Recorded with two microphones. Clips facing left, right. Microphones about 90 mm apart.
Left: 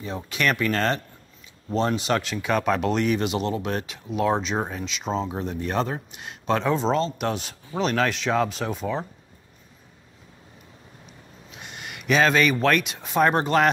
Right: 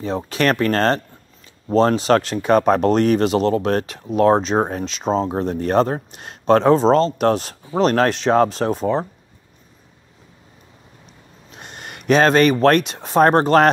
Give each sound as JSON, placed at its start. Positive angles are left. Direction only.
{"t": 0.0, "sound": "speech", "side_deg": -35}
{"t": 11.5, "sound": "speech", "side_deg": -40}